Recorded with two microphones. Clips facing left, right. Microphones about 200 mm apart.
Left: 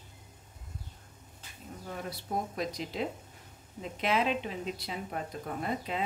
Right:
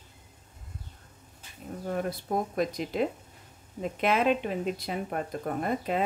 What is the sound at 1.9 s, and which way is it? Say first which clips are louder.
Speech: right 6 dB; 50° right (ahead or behind).